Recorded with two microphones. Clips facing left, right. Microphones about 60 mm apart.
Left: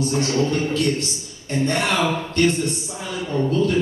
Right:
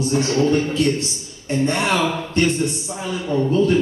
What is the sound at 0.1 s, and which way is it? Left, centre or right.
A man's voice, right.